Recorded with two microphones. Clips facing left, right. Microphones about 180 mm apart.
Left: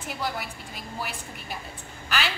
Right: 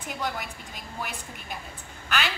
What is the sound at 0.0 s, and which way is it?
Speech, 5° left (ahead or behind).